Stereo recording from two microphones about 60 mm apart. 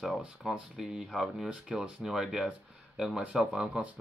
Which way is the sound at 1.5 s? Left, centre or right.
Centre.